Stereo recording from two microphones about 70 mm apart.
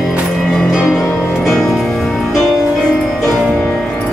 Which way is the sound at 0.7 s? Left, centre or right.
Centre.